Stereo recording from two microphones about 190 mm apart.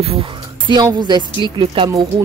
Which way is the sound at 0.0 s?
30° right (ahead or behind).